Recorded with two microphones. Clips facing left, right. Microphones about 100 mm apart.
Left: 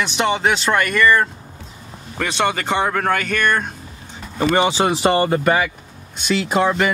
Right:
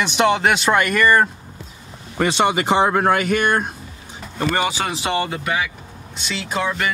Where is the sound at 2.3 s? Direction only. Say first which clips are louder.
Right 2 dB; 10° right (ahead or behind).